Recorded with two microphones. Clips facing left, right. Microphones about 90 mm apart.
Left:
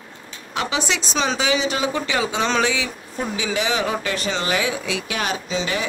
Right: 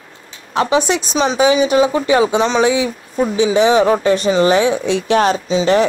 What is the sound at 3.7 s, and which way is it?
Speech, 35° right (ahead or behind).